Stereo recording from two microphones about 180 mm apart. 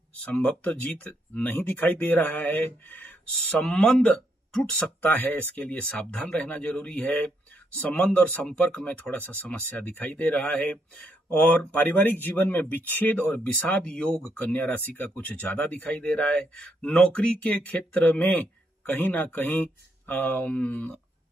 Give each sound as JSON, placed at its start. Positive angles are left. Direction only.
{"t": 0.2, "sound": "speech", "side_deg": 5}